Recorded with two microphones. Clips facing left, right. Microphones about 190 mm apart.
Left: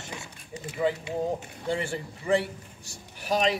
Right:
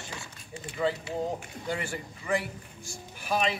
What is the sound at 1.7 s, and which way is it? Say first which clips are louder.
A man's voice: left 4 dB; 30° left (ahead or behind).